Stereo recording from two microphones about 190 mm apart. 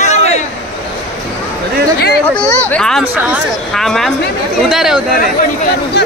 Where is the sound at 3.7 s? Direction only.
Centre (ahead or behind).